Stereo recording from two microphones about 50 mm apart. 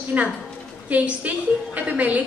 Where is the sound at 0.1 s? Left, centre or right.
Right.